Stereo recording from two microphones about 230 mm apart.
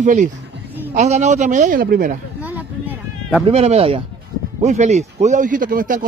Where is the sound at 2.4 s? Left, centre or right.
Centre.